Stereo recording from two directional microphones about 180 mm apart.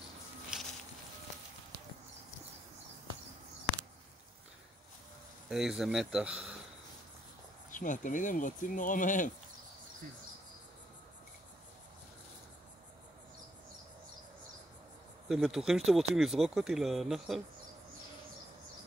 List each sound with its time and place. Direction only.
0.5 s a sound: 5° right (ahead or behind)
5.5 s speech: centre (ahead or behind)
7.7 s speech: 45° left (ahead or behind)
15.2 s speech: centre (ahead or behind)